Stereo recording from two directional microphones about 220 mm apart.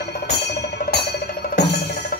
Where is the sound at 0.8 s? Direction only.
35° left (ahead or behind).